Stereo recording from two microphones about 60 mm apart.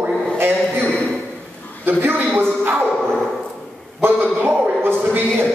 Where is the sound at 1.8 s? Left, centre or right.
Right.